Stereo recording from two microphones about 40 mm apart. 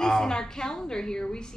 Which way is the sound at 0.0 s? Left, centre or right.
Centre.